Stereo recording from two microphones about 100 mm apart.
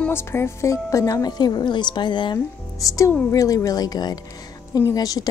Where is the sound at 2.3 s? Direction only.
35° left (ahead or behind).